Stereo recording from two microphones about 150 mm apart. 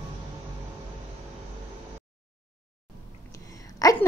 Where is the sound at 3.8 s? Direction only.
25° left (ahead or behind).